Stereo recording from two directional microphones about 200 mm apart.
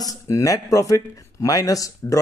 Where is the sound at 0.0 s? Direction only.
15° left (ahead or behind).